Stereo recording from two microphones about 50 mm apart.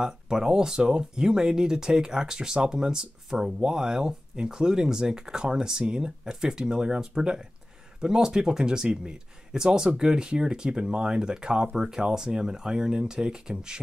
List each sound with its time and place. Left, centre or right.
0.0 s speech: centre